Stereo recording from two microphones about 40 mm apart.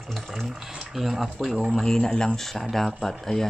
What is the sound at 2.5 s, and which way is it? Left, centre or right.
Speech, centre.